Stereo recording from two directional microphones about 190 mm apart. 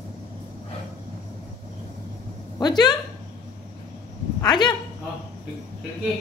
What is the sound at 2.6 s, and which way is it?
Speech, 20° left (ahead or behind).